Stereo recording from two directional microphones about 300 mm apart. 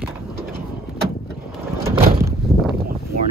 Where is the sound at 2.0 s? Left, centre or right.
Right.